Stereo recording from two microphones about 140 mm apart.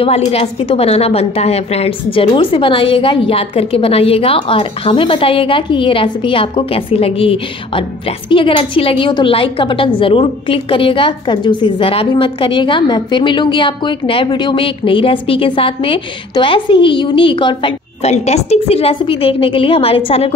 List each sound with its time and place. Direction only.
0.0 s a woman's voice: 45° left (ahead or behind)
18.1 s a woman's voice: 50° left (ahead or behind)